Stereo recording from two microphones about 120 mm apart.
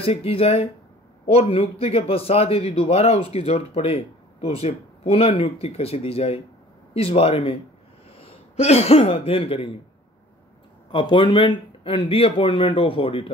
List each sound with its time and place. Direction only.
0.0 s speech: 50° left (ahead or behind)
10.9 s speech: 45° left (ahead or behind)